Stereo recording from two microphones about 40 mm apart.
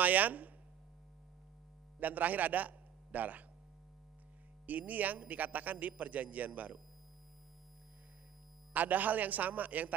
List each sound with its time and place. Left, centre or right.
0.0 s a woman's voice: right
2.0 s a man's voice: right
4.6 s a man's voice: right
8.7 s a man's voice: right